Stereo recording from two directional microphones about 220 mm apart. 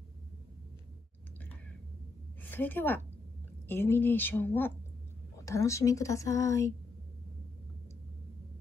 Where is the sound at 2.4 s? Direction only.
10° left (ahead or behind).